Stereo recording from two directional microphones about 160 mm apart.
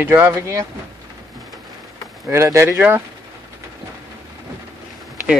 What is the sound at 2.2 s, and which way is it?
Speech, 15° right (ahead or behind).